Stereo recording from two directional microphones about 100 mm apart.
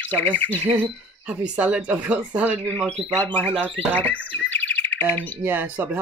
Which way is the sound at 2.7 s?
15° left (ahead or behind).